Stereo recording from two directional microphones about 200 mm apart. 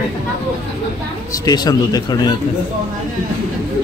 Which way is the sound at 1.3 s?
20° left (ahead or behind).